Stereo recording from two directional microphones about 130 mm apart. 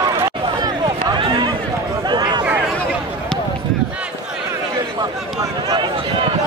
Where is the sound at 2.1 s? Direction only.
35° right (ahead or behind).